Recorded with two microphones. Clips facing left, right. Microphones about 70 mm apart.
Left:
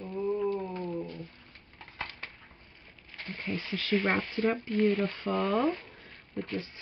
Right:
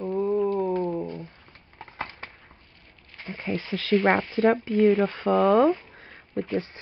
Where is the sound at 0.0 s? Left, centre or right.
Right.